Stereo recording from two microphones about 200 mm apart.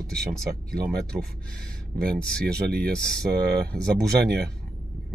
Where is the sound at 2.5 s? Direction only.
50° right (ahead or behind).